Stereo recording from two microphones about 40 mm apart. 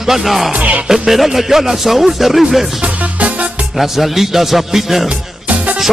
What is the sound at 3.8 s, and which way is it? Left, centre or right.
Speech, centre.